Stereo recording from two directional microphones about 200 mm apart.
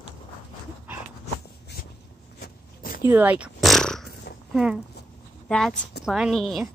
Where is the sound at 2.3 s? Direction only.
50° left (ahead or behind).